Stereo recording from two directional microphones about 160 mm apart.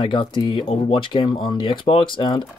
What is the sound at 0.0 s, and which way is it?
Speech, 30° left (ahead or behind).